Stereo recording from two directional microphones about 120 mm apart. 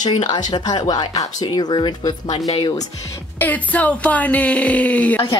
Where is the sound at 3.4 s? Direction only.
15° left (ahead or behind).